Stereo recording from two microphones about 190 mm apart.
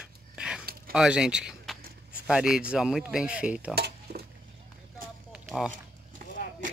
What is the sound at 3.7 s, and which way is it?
Stir, 55° right (ahead or behind).